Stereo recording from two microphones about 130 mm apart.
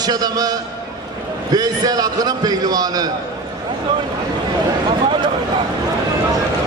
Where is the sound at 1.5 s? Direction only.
30° right (ahead or behind).